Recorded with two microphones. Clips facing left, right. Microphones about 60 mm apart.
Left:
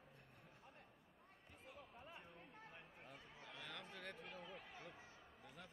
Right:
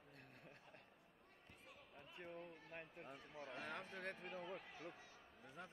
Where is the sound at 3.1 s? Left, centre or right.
Right.